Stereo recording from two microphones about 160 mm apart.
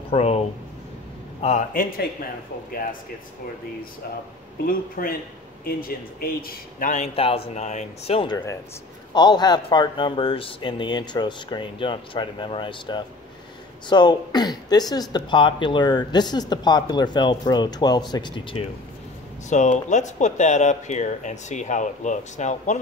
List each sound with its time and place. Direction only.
0.1 s speech: 40° left (ahead or behind)
1.7 s speech: 65° left (ahead or behind)
4.6 s speech: 60° left (ahead or behind)
7.2 s speech: 35° left (ahead or behind)
9.1 s speech: 25° left (ahead or behind)
19.5 s speech: 50° left (ahead or behind)